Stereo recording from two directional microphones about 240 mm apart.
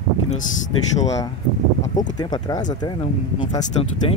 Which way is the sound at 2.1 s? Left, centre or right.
Centre.